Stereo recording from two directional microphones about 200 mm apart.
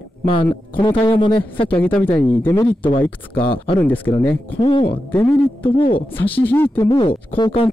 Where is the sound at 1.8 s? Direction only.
5° left (ahead or behind).